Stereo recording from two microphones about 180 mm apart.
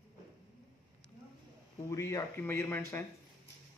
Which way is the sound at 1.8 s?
15° left (ahead or behind).